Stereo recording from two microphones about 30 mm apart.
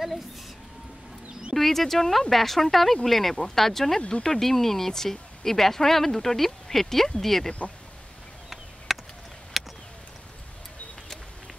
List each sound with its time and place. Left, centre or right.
1.5 s speech: centre
4.1 s speech: left
4.4 s speech: centre
8.9 s a sound: centre